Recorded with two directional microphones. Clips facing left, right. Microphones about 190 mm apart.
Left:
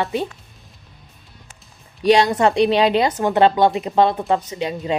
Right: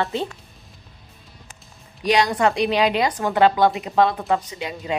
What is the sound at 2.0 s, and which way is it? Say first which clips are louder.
Speech: left 4 dB; 25° left (ahead or behind).